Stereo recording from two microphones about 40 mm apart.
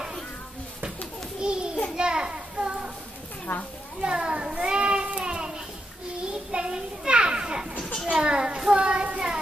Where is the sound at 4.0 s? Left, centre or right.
Right.